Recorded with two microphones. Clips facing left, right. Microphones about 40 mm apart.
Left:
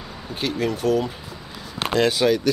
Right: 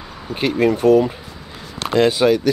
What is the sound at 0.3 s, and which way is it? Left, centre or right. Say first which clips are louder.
A man's voice: right 7 dB; right.